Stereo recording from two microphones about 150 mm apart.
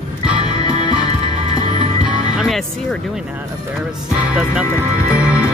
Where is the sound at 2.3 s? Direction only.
Centre (ahead or behind).